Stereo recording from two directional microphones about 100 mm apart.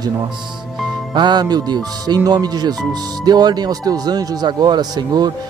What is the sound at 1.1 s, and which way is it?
Speech, 45° right (ahead or behind).